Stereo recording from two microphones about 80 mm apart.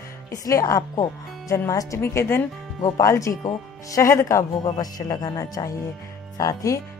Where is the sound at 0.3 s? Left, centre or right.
Left.